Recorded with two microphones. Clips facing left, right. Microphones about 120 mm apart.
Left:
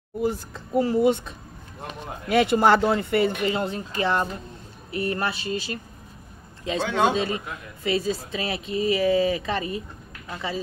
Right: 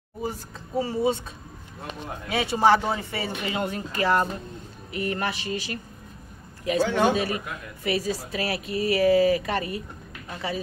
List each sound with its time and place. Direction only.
0.7 s speech: 55° left (ahead or behind)
2.2 s speech: 55° left (ahead or behind)
3.4 s speech: 30° left (ahead or behind)
4.9 s speech: 35° left (ahead or behind)